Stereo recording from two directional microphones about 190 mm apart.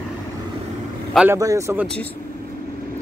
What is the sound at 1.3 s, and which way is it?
Speech, 15° right (ahead or behind).